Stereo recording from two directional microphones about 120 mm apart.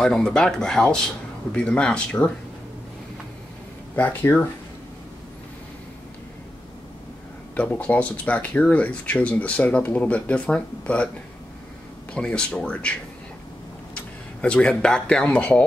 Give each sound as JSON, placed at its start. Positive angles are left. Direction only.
{"t": 0.0, "sound": "speech", "side_deg": 5}
{"t": 3.9, "sound": "speech", "side_deg": 15}
{"t": 7.5, "sound": "speech", "side_deg": 10}
{"t": 12.1, "sound": "speech", "side_deg": 10}
{"t": 13.9, "sound": "speech", "side_deg": 10}